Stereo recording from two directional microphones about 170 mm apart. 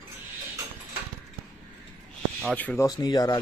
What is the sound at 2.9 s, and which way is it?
Speech, 25° left (ahead or behind).